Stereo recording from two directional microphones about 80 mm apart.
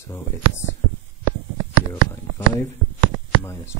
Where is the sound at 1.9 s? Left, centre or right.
Left.